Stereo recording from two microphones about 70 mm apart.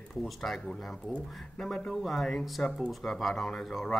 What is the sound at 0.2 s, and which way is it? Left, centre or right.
Speech, centre.